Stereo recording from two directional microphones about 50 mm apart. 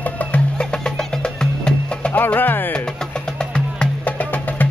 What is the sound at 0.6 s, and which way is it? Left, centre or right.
Music, centre.